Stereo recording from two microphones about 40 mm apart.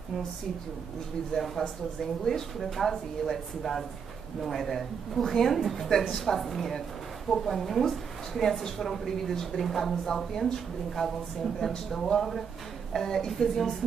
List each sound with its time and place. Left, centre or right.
1.6 s speech: centre
2.2 s a woman's voice: centre